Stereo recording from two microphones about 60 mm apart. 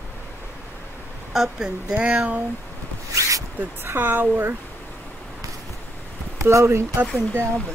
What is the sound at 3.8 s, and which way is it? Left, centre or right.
Speech, right.